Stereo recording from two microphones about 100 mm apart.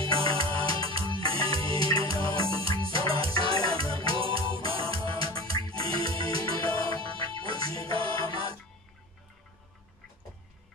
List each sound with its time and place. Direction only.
0.0 s music: 65° right (ahead or behind)